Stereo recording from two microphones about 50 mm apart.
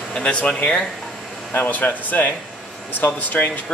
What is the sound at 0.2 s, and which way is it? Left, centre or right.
Speech, left.